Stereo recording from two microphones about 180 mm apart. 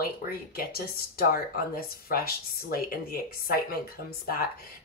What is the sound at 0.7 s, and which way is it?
Speech, 60° left (ahead or behind).